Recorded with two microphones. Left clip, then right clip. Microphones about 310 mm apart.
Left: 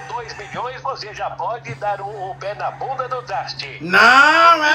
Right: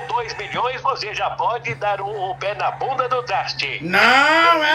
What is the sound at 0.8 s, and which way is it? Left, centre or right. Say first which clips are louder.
Speech: right 4 dB; right.